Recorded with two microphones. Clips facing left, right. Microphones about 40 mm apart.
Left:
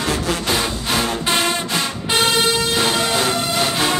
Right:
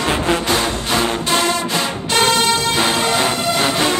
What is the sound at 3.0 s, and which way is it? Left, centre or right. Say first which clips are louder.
Music: right 2 dB; centre.